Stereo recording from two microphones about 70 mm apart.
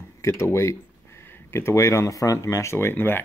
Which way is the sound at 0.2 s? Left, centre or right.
Left.